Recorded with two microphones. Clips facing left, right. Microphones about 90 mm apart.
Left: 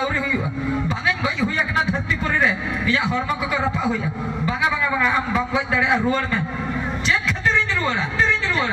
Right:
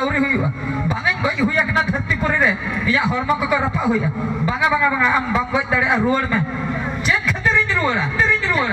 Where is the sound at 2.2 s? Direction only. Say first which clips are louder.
Right 2 dB; 20° right (ahead or behind).